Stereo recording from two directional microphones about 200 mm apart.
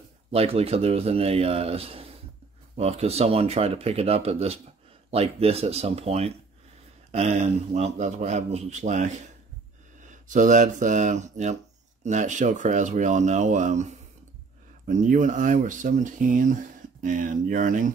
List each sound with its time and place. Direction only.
0.3 s speech: 30° right (ahead or behind)